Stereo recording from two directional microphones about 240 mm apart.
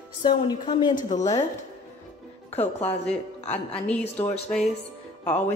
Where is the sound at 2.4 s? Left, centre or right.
Left.